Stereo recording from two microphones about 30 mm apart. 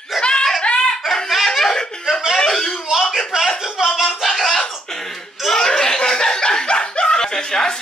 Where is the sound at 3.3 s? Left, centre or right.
Right.